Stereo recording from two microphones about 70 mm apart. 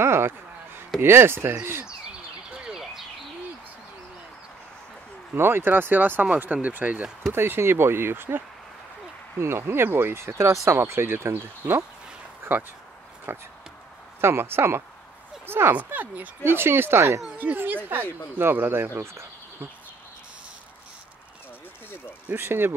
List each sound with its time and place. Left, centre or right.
0.0 s a sound: right
1.0 s speech: right
2.5 s a sound: centre
5.3 s speech: right
7.3 s speech: right
10.8 s speech: right
13.3 s speech: right
15.8 s speech: right
17.3 s speech: right
22.3 s speech: right